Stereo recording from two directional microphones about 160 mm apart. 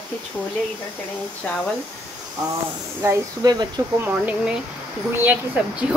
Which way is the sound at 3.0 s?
20° right (ahead or behind).